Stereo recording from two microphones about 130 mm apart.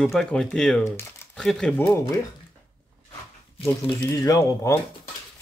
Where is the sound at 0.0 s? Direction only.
5° left (ahead or behind).